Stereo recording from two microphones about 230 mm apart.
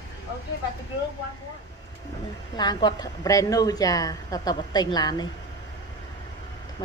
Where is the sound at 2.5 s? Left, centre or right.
Centre.